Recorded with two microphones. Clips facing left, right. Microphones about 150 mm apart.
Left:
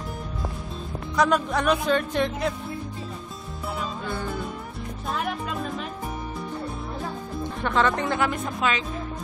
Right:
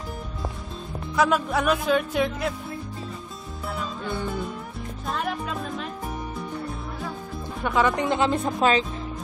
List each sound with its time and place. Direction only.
1.1 s music: 5° right (ahead or behind)
5.1 s music: centre (ahead or behind)
7.6 s speech: 10° right (ahead or behind)
8.5 s speech: 35° right (ahead or behind)